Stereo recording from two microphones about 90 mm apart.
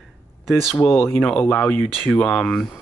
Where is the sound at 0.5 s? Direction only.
Centre (ahead or behind).